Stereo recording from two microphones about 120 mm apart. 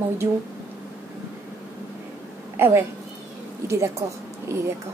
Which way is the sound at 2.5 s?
20° right (ahead or behind).